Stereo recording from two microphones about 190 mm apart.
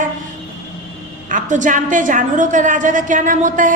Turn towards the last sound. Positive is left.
turn(degrees=-45)  # may be behind; listen again after turning